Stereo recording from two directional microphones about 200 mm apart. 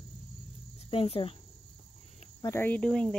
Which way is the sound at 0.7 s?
30° left (ahead or behind).